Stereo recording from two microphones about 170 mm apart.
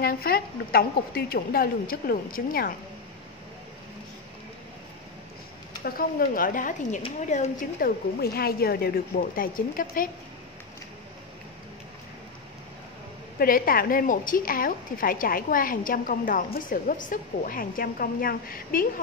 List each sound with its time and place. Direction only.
0.0 s a woman's voice: 60° left (ahead or behind)
5.9 s a woman's voice: 60° left (ahead or behind)
8.2 s a woman's voice: 65° left (ahead or behind)
13.4 s a woman's voice: 60° left (ahead or behind)